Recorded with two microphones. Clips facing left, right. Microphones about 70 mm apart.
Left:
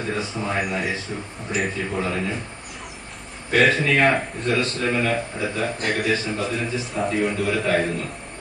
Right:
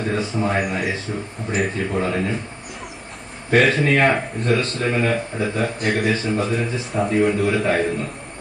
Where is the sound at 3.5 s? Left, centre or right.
Right.